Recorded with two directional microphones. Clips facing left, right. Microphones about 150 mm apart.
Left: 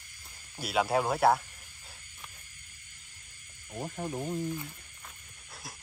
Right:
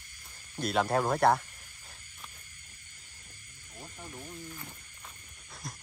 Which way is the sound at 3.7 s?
60° left (ahead or behind).